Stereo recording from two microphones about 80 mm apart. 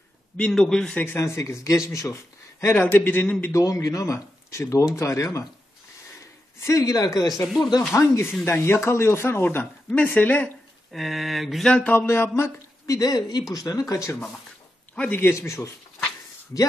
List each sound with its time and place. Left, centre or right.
0.5 s a man's voice: centre
1.0 s speech: left
3.5 s speech: left
6.6 s speech: left
7.9 s speech: left
10.9 s speech: centre
11.6 s a man's voice: centre
11.9 s speech: left
15.0 s speech: left